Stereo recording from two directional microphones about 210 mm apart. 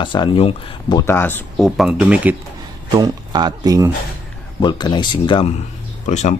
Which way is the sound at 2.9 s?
20° right (ahead or behind).